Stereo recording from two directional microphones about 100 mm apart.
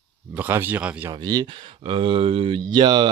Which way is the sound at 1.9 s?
65° right (ahead or behind).